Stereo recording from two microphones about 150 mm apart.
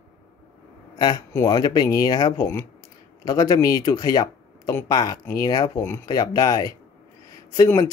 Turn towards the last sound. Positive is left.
turn(degrees=20)  # may be behind; listen again after turning